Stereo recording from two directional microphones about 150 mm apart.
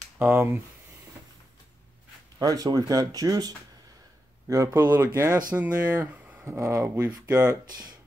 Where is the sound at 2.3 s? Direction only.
25° right (ahead or behind).